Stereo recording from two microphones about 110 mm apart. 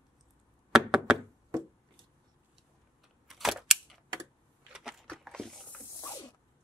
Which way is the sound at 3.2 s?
Centre (ahead or behind).